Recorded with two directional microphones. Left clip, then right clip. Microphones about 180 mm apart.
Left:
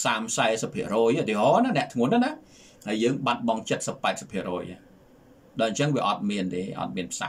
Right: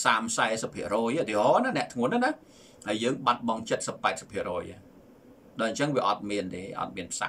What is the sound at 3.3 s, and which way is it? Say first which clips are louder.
Speech: left 1 dB; 20° left (ahead or behind).